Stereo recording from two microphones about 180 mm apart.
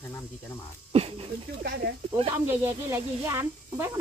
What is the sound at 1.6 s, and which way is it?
Speech, 60° right (ahead or behind).